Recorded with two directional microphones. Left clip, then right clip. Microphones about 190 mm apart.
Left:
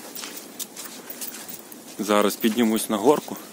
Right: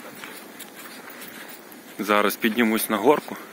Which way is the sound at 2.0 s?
15° left (ahead or behind).